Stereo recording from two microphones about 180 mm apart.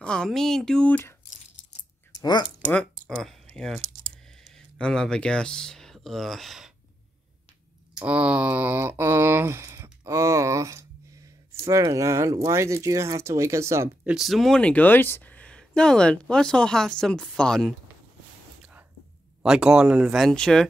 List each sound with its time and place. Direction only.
0.0 s speech: 5° left (ahead or behind)
2.2 s speech: 25° left (ahead or behind)
2.7 s typing: 5° left (ahead or behind)
7.9 s speech: 5° right (ahead or behind)
14.1 s speech: centre (ahead or behind)
18.6 s whispering: 10° right (ahead or behind)
19.4 s speech: 5° right (ahead or behind)